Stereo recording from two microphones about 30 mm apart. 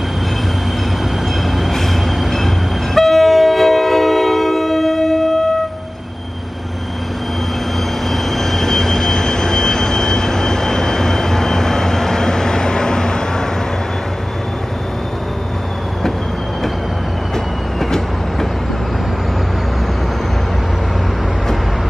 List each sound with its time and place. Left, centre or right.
2.3 s train: centre
8.1 s train: centre; by 13.5 s left